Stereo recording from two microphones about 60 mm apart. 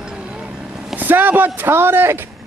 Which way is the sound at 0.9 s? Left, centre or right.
Right.